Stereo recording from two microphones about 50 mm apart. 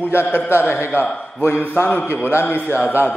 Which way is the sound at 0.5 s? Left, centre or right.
Left.